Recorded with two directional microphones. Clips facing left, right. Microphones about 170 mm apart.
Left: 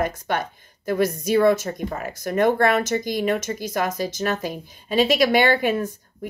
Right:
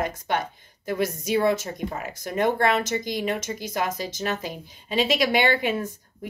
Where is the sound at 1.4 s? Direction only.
50° left (ahead or behind).